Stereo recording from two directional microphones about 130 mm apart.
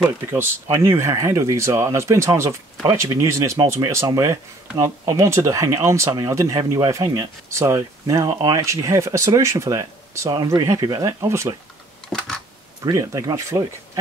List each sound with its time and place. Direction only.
0.3 s speech: 20° right (ahead or behind)
6.6 s speech: 35° right (ahead or behind)
12.8 s speech: 25° right (ahead or behind)